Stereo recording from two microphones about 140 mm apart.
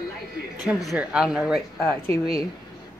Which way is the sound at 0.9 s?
5° right (ahead or behind).